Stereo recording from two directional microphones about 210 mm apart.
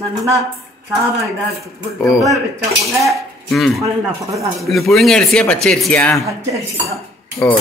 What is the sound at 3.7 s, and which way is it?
Speech, 15° right (ahead or behind).